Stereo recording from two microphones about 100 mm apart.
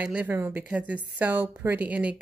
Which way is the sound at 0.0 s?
15° right (ahead or behind).